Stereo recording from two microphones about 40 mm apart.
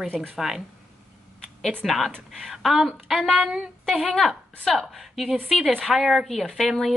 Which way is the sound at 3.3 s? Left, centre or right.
Right.